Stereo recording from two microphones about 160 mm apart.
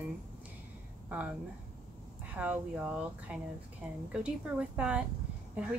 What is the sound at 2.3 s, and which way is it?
Speech, 10° right (ahead or behind).